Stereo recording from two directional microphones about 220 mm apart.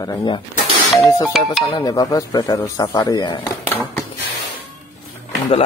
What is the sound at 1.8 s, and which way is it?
Speech, 15° left (ahead or behind).